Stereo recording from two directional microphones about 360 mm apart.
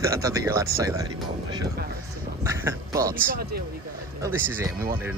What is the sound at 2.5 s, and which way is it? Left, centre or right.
Speech, centre.